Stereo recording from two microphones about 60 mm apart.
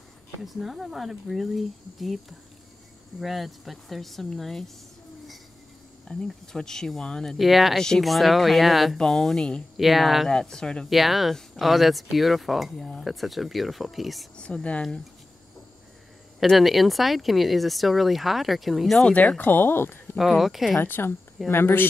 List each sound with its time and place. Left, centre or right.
0.4 s speech: centre
6.0 s speech: centre
7.3 s speech: centre
9.8 s speech: centre
10.3 s speech: centre
10.9 s speech: centre
14.3 s speech: centre
16.3 s speech: centre
19.0 s speech: left
20.2 s speech: centre
20.8 s speech: left